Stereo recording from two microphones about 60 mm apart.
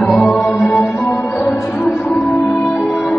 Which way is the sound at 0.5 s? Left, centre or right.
Left.